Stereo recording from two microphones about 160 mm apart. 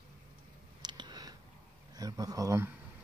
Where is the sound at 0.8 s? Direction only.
30° right (ahead or behind).